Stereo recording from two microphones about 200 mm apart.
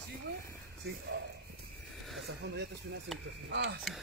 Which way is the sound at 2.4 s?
60° right (ahead or behind).